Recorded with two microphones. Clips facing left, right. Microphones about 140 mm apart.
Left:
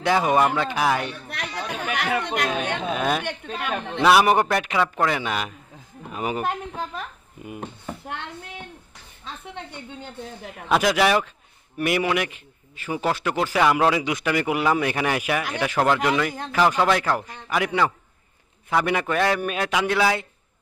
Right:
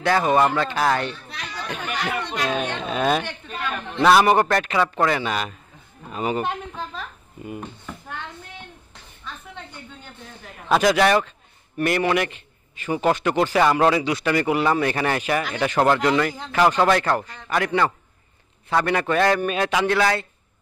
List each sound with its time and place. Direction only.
0.0 s a man's voice: 15° left (ahead or behind)
1.9 s speech: 60° left (ahead or behind)
2.9 s a man's voice: 5° left (ahead or behind)
3.3 s speech: 60° left (ahead or behind)
4.0 s a man's voice: 5° left (ahead or behind)
6.1 s a sound: 10° left (ahead or behind)
10.7 s a man's voice: 5° left (ahead or behind)